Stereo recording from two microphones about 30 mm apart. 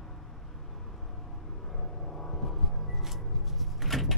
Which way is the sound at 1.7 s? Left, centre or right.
Left.